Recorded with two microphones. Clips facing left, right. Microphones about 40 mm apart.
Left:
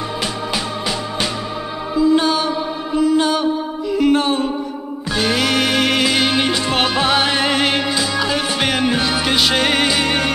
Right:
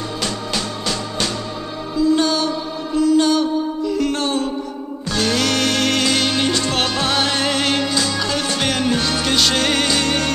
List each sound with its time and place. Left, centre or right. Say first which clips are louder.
2.0 s mantra: left 2 dB; centre
5.1 s music: left 2 dB; centre